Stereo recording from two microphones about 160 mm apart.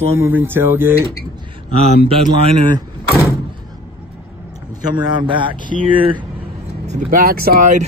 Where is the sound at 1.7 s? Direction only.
40° right (ahead or behind).